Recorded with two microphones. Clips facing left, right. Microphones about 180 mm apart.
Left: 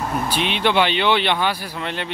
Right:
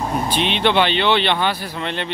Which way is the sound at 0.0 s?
15° right (ahead or behind).